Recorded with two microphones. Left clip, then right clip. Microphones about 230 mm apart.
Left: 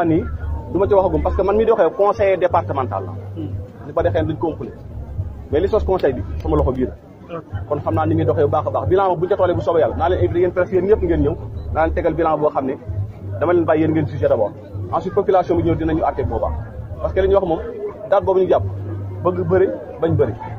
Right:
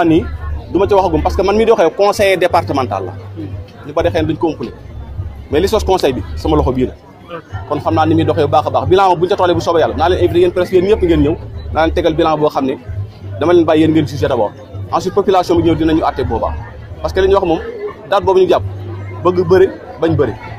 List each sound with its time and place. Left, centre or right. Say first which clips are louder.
0.7 s a man's voice: right 4 dB; right
7.7 s a man's voice: right 6 dB; right